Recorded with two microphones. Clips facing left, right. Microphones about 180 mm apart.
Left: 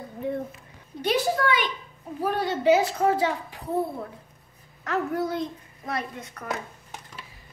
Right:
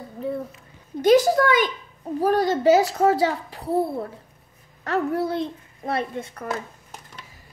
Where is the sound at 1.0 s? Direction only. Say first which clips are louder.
Right 8 dB; 40° right (ahead or behind).